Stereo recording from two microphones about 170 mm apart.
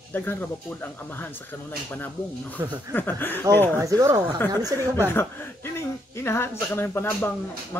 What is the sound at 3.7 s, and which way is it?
Speech, 20° right (ahead or behind).